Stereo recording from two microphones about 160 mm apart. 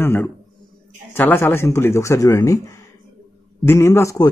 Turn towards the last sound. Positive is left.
turn(degrees=20)  # may be behind; listen again after turning